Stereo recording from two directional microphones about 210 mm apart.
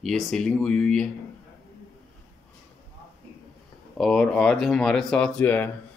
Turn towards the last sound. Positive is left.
turn(degrees=10)  # may be behind; listen again after turning